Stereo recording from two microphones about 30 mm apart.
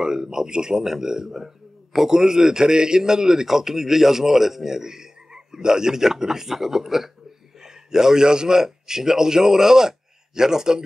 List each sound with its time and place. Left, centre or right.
0.0 s a man's voice: right